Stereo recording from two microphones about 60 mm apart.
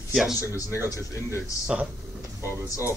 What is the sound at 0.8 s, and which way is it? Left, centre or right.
Speech, left.